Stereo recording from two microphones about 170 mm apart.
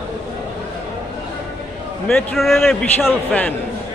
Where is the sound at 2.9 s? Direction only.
10° left (ahead or behind).